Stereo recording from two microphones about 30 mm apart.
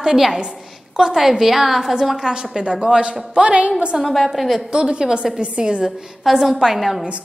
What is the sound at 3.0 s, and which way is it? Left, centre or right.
Speech, right.